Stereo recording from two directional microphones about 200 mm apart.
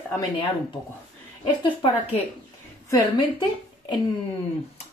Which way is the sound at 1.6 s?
25° left (ahead or behind).